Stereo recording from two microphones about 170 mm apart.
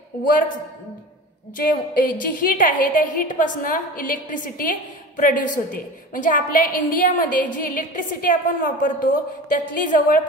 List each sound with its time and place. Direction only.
1.6 s a woman's voice: 55° left (ahead or behind)